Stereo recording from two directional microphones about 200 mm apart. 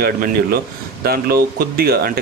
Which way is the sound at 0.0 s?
50° right (ahead or behind).